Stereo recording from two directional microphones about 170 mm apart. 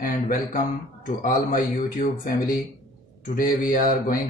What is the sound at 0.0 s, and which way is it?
Speech, 55° left (ahead or behind).